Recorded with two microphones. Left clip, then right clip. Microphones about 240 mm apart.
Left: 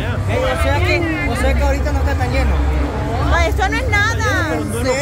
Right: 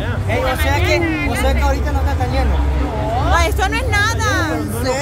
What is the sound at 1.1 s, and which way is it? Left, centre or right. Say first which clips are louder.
Speech: even; right.